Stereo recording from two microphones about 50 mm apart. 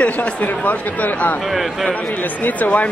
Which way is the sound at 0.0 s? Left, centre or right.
Left.